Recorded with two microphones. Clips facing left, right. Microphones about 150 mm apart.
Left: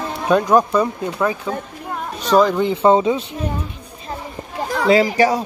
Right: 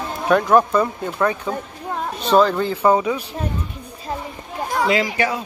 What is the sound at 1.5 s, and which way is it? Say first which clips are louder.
Speech: left 1 dB; centre (ahead or behind).